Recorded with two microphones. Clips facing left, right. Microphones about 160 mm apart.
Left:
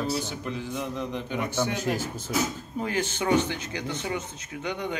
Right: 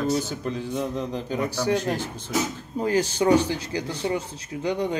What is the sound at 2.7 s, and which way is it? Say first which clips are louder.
Speech: right 6 dB; 35° right (ahead or behind).